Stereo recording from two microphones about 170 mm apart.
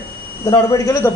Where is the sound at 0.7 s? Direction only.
15° left (ahead or behind).